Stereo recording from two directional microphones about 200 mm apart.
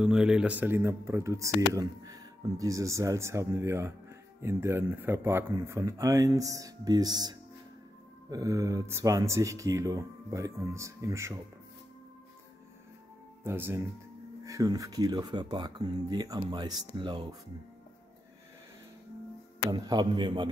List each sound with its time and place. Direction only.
0.0 s speech: 5° right (ahead or behind)
13.4 s speech: 10° right (ahead or behind)
19.7 s speech: 20° right (ahead or behind)